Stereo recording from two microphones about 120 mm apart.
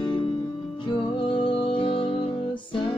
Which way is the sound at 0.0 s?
40° left (ahead or behind).